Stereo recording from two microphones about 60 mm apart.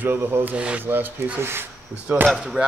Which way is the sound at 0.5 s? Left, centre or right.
Centre.